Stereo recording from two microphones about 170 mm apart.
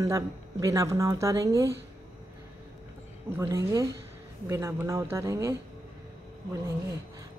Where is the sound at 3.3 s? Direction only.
15° right (ahead or behind).